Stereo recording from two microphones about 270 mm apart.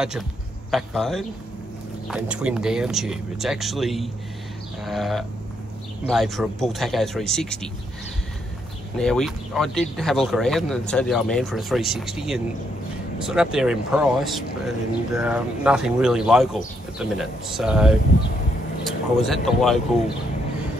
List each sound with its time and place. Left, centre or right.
0.7 s speech: centre
8.9 s speech: centre